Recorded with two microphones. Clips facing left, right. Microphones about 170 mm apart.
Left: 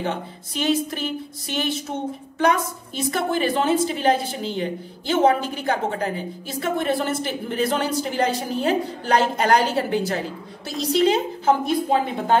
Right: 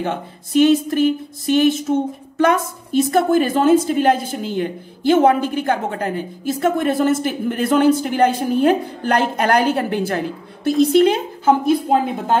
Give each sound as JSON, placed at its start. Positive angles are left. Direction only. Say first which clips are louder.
{"t": 0.0, "sound": "a woman's voice", "louder": "right 3 dB", "side_deg": -50}